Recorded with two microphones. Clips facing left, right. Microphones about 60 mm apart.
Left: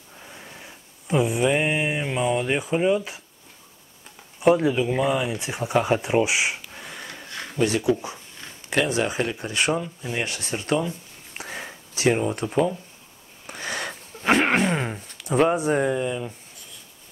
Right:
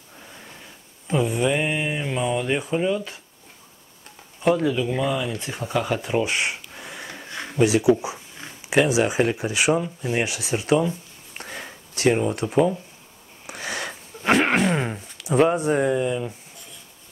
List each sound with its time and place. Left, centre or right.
0.1 s mantra: centre
4.4 s speech: centre
5.7 s speech: left
5.9 s a sound: centre
7.2 s speech: centre
11.3 s a sound: centre
13.5 s speech: centre